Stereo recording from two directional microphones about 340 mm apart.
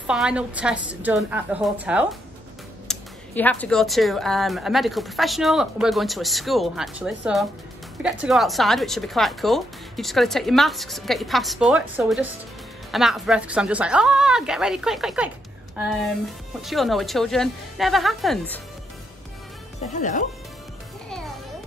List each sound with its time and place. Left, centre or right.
0.0 s speech: centre
19.9 s speech: left